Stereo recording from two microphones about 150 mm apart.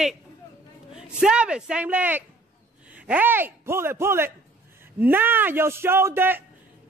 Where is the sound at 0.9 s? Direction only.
5° right (ahead or behind).